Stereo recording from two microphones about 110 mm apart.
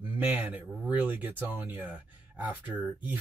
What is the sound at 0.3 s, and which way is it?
Speech, 15° right (ahead or behind).